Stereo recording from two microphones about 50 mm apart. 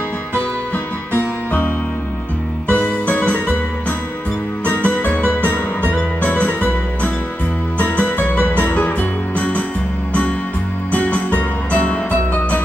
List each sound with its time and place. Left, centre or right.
1.1 s music: left
2.7 s music: left
4.6 s music: left
10.9 s music: left
12.1 s music: left